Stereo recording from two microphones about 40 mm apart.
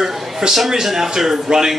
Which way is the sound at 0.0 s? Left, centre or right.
Centre.